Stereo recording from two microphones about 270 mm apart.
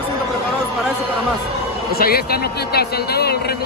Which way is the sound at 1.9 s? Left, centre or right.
Left.